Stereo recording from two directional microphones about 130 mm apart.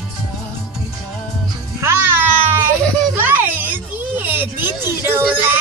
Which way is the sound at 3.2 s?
15° right (ahead or behind).